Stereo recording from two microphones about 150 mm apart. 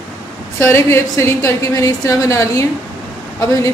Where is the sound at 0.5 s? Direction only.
15° left (ahead or behind).